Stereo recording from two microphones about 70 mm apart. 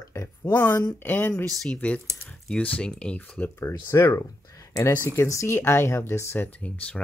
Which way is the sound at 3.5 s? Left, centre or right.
Left.